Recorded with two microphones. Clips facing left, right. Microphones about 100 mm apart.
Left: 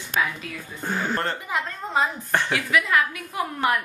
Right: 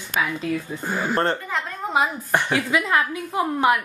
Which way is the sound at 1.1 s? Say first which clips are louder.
Right 5 dB; 30° right (ahead or behind).